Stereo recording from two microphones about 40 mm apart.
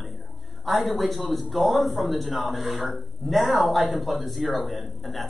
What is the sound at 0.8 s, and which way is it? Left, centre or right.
Speech, centre.